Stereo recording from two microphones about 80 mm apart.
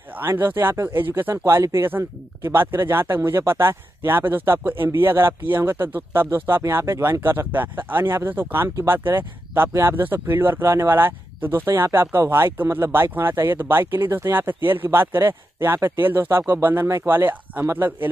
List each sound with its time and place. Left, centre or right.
0.1 s speech: right
1.3 s speech: right